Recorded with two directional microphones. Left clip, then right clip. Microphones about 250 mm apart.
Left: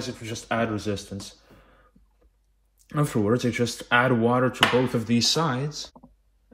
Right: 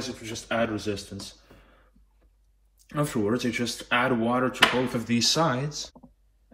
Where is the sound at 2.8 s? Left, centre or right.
Centre.